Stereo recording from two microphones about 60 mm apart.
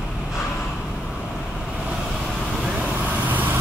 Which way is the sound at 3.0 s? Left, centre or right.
Right.